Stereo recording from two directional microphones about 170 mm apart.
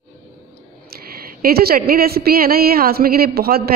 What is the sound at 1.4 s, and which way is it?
A woman's voice, 65° right (ahead or behind).